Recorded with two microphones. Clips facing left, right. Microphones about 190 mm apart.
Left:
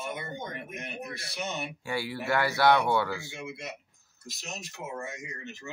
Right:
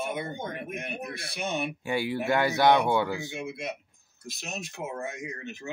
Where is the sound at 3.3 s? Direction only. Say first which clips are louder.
Right 5 dB; 55° right (ahead or behind).